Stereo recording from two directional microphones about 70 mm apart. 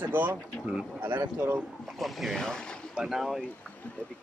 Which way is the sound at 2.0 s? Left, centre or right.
Centre.